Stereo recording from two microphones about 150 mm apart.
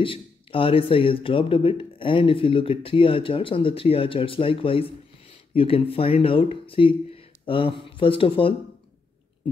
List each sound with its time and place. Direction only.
0.0 s speech: 35° left (ahead or behind)